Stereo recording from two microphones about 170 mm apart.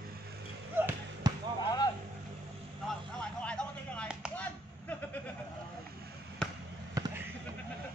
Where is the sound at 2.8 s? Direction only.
5° left (ahead or behind).